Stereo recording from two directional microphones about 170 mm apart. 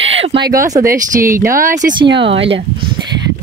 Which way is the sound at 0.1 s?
35° right (ahead or behind).